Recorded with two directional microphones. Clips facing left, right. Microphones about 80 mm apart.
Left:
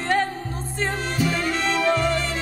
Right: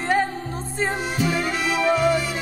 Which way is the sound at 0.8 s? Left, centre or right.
Centre.